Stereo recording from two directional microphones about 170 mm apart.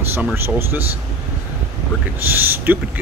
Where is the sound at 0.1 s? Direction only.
15° right (ahead or behind).